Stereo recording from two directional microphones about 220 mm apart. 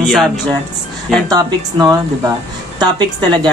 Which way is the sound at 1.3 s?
15° right (ahead or behind).